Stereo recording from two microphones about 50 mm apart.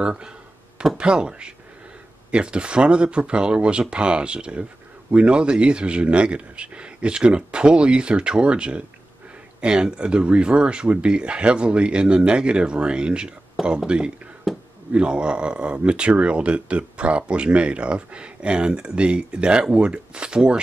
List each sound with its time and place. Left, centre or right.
0.0 s speech: centre